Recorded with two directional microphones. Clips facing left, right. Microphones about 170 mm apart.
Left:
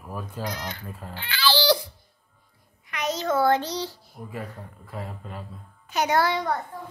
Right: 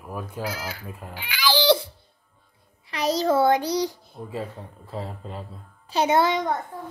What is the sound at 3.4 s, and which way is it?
A child's voice, 15° right (ahead or behind).